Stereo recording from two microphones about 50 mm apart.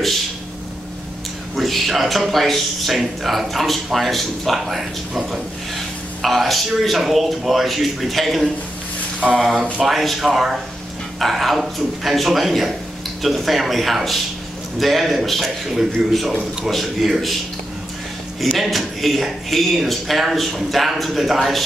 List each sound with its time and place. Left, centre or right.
1.5 s speech: centre
18.6 s speech: centre